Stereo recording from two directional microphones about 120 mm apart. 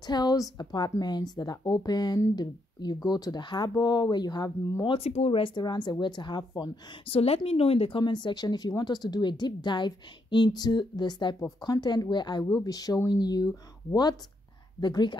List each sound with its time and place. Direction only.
0.0 s speech: 35° left (ahead or behind)
4.9 s speech: 60° left (ahead or behind)
5.4 s speech: 40° left (ahead or behind)
7.1 s speech: 55° left (ahead or behind)
8.0 s speech: 40° left (ahead or behind)
14.8 s speech: 40° left (ahead or behind)